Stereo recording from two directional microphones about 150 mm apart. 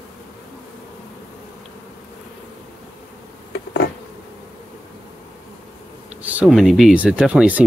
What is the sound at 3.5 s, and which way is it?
Insect, 90° left.